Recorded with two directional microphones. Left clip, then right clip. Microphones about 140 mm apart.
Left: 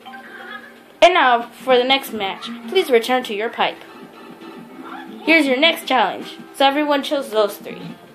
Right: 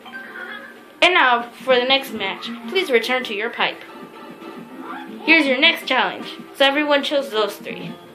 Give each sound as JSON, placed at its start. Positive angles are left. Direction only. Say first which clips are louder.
{"t": 0.9, "sound": "a woman's voice", "louder": "left 2 dB", "side_deg": 60}
{"t": 5.2, "sound": "a woman's voice", "louder": "even", "side_deg": 60}